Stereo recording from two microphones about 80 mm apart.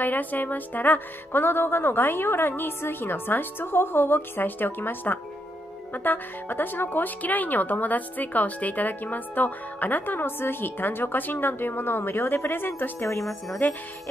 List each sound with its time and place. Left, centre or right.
0.0 s speech: left